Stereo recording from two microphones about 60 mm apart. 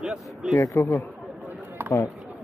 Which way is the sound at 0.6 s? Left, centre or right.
Left.